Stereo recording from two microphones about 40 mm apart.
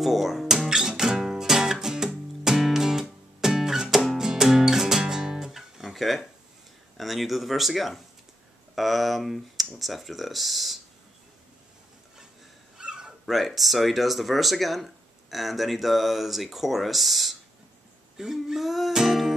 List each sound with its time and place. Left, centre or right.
0.0 s speech: centre
0.7 s music: centre
5.9 s dishes: centre
7.0 s speech: centre
12.7 s dog: centre
13.2 s speech: centre
18.1 s music: centre
18.9 s speech: centre